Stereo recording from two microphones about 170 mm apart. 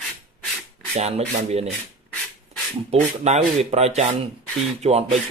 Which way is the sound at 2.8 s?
40° right (ahead or behind).